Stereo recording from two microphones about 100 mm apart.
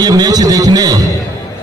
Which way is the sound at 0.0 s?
40° right (ahead or behind).